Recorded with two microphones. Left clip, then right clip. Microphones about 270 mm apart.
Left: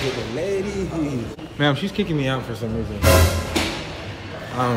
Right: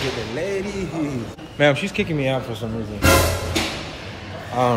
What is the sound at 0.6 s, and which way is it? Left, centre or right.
A man's voice, centre.